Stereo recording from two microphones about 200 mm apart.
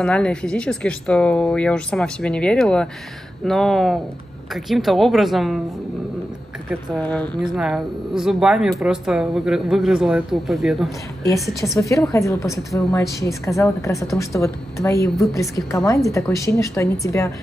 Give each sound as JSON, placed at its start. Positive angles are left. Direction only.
{"t": 0.0, "sound": "a woman's voice", "side_deg": 5}
{"t": 6.7, "sound": "a woman's voice", "side_deg": 5}
{"t": 11.6, "sound": "a woman's voice", "side_deg": 15}